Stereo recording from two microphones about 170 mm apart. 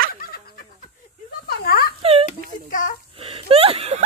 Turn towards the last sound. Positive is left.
turn(degrees=-35)  # may be behind; listen again after turning